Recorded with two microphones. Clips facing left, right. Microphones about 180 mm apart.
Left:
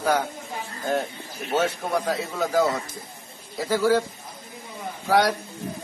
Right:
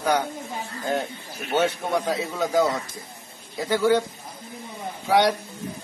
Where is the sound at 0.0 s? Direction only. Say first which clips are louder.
Even; 5° left (ahead or behind).